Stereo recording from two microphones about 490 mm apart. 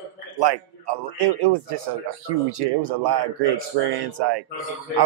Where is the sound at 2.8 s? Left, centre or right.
Right.